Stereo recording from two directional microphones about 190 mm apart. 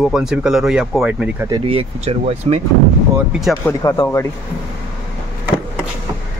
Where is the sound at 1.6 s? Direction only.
30° right (ahead or behind).